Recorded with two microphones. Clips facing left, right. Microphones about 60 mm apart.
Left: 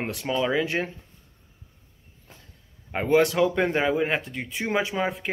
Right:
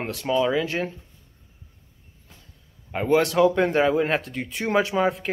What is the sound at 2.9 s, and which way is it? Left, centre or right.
Speech, left.